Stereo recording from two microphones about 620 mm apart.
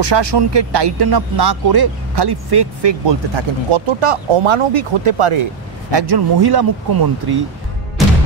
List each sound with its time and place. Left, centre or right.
0.0 s speech: right